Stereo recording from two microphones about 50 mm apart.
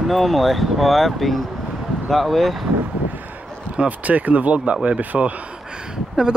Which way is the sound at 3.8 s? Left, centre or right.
Right.